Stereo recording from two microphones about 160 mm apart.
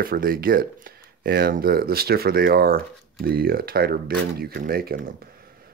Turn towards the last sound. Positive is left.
turn(degrees=-70)  # may be behind; listen again after turning